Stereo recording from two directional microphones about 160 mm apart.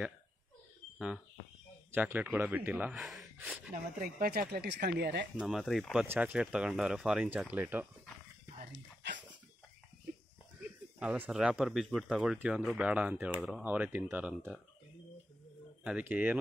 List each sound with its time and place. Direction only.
0.9 s speech: 5° right (ahead or behind)
4.0 s speech: 65° right (ahead or behind); by 5.3 s 90° right
5.4 s speech: centre (ahead or behind)
6.0 s speech: 10° right (ahead or behind)
8.7 s whispering: 90° right
11.0 s speech: 10° right (ahead or behind)
15.8 s speech: 10° right (ahead or behind)